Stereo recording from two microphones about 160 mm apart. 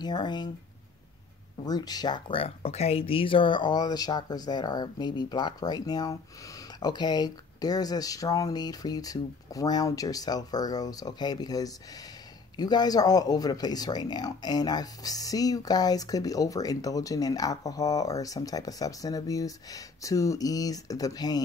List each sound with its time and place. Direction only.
0.0 s speech: 25° left (ahead or behind)
1.7 s speech: 25° left (ahead or behind)